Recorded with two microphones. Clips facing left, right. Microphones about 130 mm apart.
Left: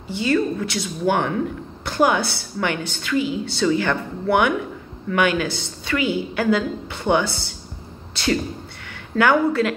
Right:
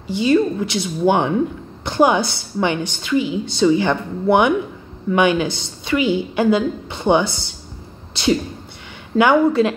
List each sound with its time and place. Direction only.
0.1 s a woman's voice: 15° right (ahead or behind)
9.1 s a woman's voice: 20° right (ahead or behind)